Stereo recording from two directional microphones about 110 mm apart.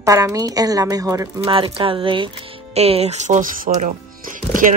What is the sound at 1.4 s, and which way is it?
Speech, 50° right (ahead or behind).